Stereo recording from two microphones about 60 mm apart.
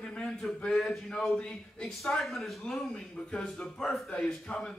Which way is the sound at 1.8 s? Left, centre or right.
Centre.